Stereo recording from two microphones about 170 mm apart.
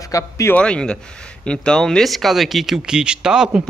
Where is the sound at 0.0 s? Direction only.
20° left (ahead or behind).